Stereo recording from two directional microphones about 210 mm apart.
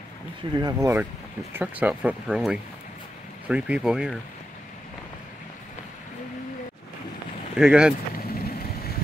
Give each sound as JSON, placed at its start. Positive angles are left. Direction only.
{"t": 0.6, "sound": "speech", "side_deg": -15}
{"t": 7.5, "sound": "speech", "side_deg": -5}
{"t": 8.1, "sound": "vehicle", "side_deg": 45}